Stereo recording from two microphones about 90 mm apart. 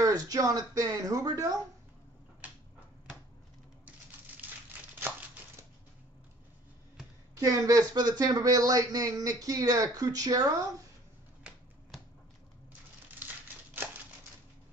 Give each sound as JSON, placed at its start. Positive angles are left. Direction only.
{"t": 0.0, "sound": "speech", "side_deg": -45}
{"t": 4.4, "sound": "crumpling", "side_deg": -20}
{"t": 7.3, "sound": "speech", "side_deg": -40}